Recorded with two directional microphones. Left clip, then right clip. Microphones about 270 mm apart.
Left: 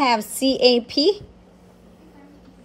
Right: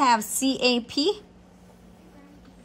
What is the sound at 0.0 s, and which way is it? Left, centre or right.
A woman's voice, centre.